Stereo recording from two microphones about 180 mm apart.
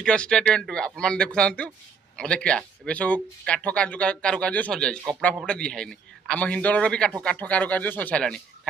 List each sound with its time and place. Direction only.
0.0 s a man's voice: 5° left (ahead or behind)